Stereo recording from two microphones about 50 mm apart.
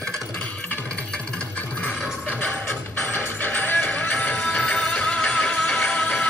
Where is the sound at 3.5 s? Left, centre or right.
Left.